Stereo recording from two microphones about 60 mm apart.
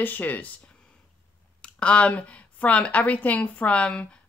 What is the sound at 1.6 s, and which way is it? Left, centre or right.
Speech, centre.